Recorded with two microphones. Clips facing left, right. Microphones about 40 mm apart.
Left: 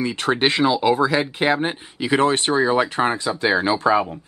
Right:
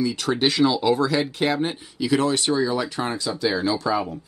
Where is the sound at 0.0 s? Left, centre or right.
Left.